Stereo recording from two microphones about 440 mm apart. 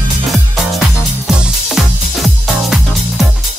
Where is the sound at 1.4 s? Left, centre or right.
Centre.